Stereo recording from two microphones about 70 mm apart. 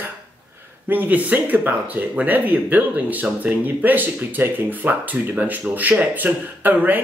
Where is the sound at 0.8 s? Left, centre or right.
Right.